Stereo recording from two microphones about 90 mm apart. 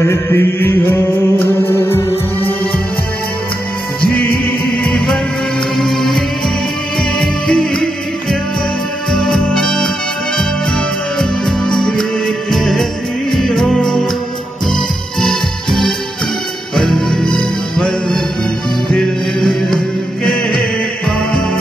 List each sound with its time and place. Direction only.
0.0 s mantra: 35° left (ahead or behind)
4.1 s music: 20° left (ahead or behind)
4.9 s music: 5° left (ahead or behind)
11.1 s music: 5° left (ahead or behind)